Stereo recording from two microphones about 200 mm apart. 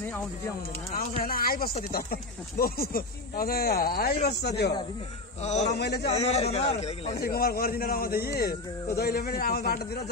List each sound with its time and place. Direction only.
1.2 s a man's voice: 45° left (ahead or behind)
5.4 s speech: 35° left (ahead or behind)
5.7 s a man's voice: 55° left (ahead or behind)
6.1 s speech: 30° left (ahead or behind)
7.2 s speech: 50° left (ahead or behind)